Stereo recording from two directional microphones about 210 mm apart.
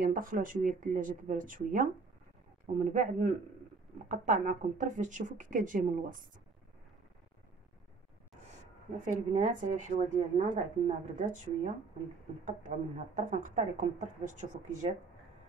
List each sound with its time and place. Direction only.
0.0 s speech: 40° right (ahead or behind)
9.0 s speech: 40° right (ahead or behind)